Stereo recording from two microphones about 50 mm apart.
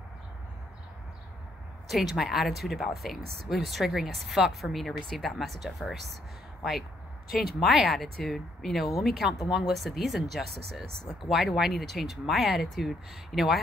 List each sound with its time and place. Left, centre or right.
1.9 s speech: centre
7.3 s speech: centre